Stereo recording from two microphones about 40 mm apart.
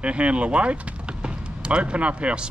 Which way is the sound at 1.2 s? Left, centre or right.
Right.